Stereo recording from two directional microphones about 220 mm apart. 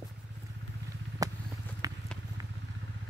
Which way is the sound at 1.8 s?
15° right (ahead or behind).